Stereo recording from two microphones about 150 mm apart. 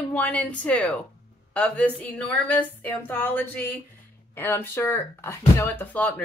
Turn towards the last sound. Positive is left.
turn(degrees=10)  # may be behind; listen again after turning